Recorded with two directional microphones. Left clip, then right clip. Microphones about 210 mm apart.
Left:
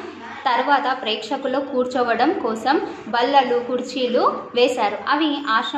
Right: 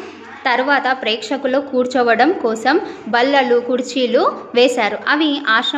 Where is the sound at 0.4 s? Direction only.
55° right (ahead or behind).